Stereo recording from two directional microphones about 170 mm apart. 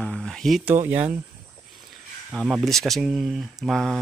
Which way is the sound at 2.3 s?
Centre (ahead or behind).